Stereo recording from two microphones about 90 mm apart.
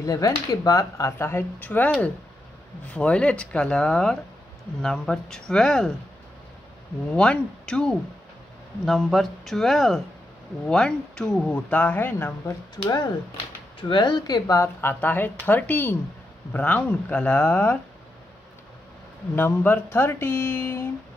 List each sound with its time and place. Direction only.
0.0 s speech: 40° left (ahead or behind); by 1.9 s 20° left (ahead or behind)
2.9 s speech: 10° left (ahead or behind)
7.1 s speech: 10° left (ahead or behind)
12.7 s speech: 60° left (ahead or behind); by 14.7 s 45° left (ahead or behind)
14.8 s speech: 25° left (ahead or behind)
19.3 s speech: 20° left (ahead or behind)